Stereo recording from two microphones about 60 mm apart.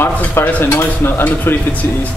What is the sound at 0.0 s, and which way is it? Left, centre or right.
Speech, left.